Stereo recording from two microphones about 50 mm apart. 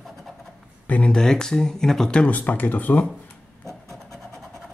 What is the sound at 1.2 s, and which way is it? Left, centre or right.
Speech, centre.